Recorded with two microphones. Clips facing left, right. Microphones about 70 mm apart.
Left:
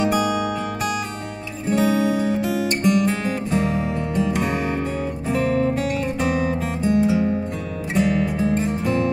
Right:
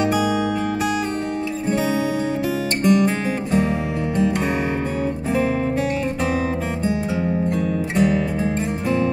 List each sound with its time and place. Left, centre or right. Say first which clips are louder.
0.0 s music: right 1 dB; centre
1.7 s music: left 3 dB; centre
5.3 s music: left 1 dB; centre